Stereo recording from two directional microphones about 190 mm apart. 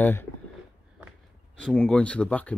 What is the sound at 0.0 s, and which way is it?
Speech, 10° left (ahead or behind).